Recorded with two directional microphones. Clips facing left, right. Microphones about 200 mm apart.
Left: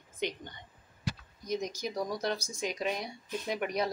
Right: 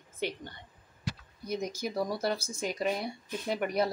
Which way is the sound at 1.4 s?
10° right (ahead or behind).